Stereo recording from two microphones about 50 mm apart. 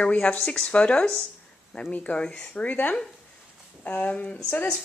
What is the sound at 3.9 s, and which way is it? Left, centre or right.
Speech, left.